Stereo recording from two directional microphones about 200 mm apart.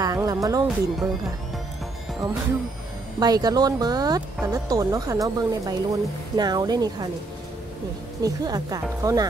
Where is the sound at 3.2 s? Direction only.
20° right (ahead or behind).